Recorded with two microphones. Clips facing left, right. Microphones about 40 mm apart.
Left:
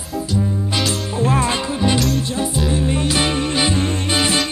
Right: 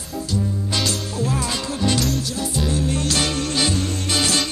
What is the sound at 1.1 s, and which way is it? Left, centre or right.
Music, left.